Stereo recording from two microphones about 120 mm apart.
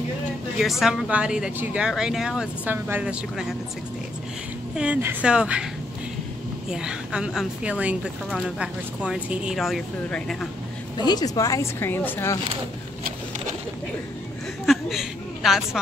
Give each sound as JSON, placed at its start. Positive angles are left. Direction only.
{"t": 0.6, "sound": "speech", "side_deg": -5}
{"t": 4.7, "sound": "speech", "side_deg": -10}
{"t": 6.7, "sound": "speech", "side_deg": -5}
{"t": 11.0, "sound": "speech", "side_deg": 35}
{"t": 14.7, "sound": "a sound", "side_deg": 0}